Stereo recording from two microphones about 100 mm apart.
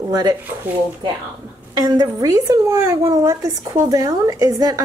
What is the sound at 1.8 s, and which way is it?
Speech, 40° right (ahead or behind).